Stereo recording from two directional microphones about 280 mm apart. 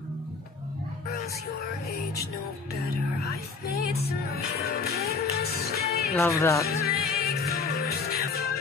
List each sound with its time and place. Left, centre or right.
2.8 s music: left
6.1 s speech: centre
6.6 s music: left